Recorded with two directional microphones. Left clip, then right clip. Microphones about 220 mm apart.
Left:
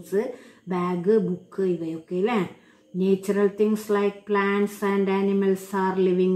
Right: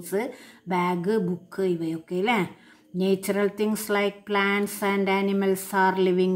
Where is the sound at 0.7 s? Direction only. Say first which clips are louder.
Even; 45° right (ahead or behind).